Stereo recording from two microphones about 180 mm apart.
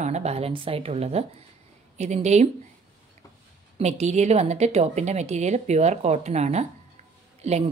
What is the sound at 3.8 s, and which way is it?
Speech, 40° right (ahead or behind).